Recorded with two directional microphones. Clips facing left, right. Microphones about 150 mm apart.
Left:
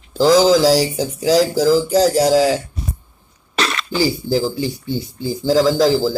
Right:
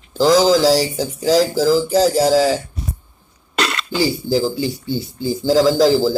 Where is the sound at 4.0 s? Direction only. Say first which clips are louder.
Even; 25° right (ahead or behind).